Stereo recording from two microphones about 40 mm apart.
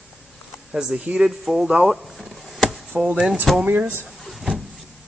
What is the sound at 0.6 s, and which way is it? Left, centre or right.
Speech, centre.